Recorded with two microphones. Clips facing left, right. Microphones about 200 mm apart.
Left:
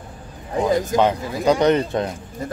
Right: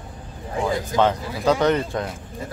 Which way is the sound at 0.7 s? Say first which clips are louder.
Left 6 dB; 45° left (ahead or behind).